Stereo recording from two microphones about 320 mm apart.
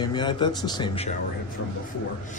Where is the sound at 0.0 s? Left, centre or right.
Centre.